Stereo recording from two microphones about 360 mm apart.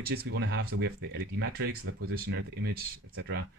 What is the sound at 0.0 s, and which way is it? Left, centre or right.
Speech, right.